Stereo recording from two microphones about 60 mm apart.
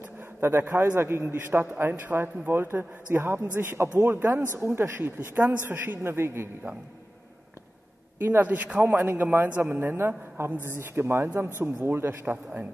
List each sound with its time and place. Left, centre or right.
0.4 s a man's voice: right
8.2 s a man's voice: right